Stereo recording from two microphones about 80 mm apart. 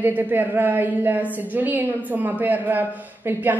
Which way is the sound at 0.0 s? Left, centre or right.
Right.